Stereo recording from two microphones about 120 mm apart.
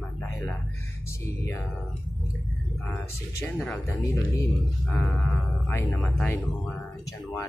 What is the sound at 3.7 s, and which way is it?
Speech, 25° left (ahead or behind).